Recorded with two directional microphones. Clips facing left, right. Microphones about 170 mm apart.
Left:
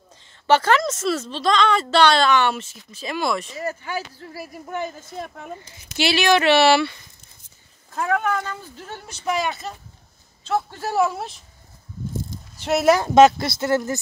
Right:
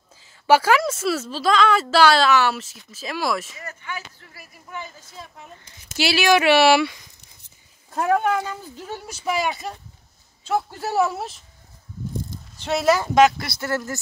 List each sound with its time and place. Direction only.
0.2 s a woman's voice: 5° right (ahead or behind)
3.5 s speech: 35° left (ahead or behind)
4.7 s speech: 55° left (ahead or behind)
5.9 s speech: 5° right (ahead or behind)
7.9 s speech: 30° right (ahead or behind)
8.3 s a woman's voice: 10° right (ahead or behind)
12.6 s speech: 10° left (ahead or behind)
13.0 s speech: 25° left (ahead or behind)